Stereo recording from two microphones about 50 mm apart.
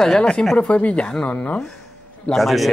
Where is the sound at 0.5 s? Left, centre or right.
Left.